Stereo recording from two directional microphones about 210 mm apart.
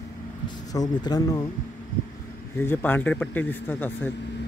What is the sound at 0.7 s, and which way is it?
Speech, 20° left (ahead or behind).